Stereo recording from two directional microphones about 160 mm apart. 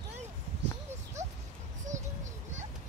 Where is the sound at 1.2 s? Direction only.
45° right (ahead or behind).